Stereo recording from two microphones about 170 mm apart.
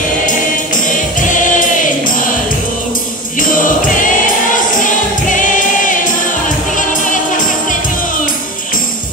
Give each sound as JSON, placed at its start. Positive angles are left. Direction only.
{"t": 1.2, "sound": "choir", "side_deg": 50}
{"t": 3.3, "sound": "music", "side_deg": 55}
{"t": 4.8, "sound": "choir", "side_deg": 50}
{"t": 6.7, "sound": "music", "side_deg": 50}